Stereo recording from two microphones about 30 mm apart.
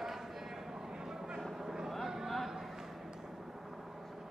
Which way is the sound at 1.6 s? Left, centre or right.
Centre.